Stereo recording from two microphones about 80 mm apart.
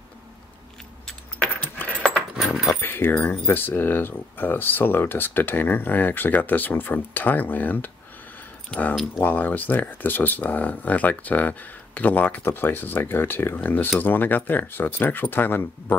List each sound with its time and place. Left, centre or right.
1.0 s keys jangling: centre
2.3 s keys jangling: centre
2.7 s speech: left